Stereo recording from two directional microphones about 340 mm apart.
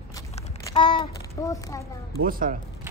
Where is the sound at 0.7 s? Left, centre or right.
Centre.